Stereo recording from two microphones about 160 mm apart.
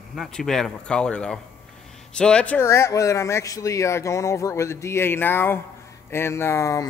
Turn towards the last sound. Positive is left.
turn(degrees=20)  # may be behind; listen again after turning